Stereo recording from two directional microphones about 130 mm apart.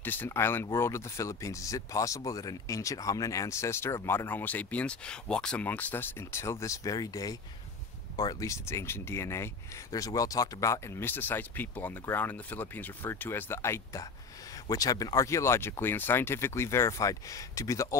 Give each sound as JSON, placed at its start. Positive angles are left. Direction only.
{"t": 0.0, "sound": "speech", "side_deg": 15}